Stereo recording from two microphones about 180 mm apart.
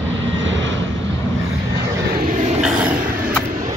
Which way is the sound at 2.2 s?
45° right (ahead or behind).